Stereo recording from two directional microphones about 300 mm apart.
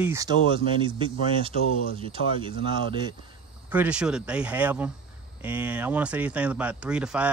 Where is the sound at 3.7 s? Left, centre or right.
Centre.